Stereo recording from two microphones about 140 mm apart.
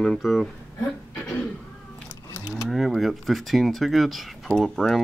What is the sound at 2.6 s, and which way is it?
Speech, centre (ahead or behind).